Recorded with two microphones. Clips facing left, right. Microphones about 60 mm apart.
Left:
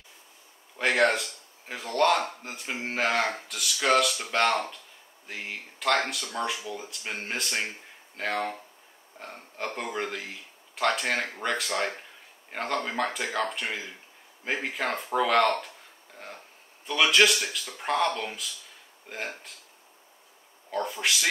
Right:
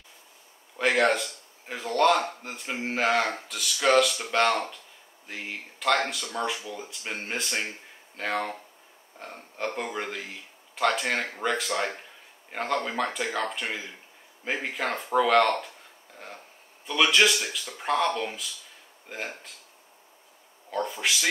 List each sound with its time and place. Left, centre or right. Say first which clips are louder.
0.7 s speech: right 1 dB; centre
16.8 s speech: even; centre
20.7 s speech: even; centre